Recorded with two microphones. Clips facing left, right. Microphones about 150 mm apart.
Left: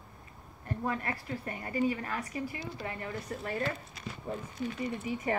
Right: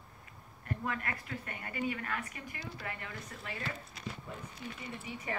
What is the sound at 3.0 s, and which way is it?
Speech, 40° left (ahead or behind).